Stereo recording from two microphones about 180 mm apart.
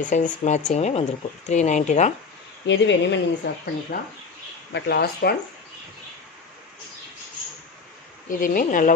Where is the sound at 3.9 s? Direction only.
55° left (ahead or behind).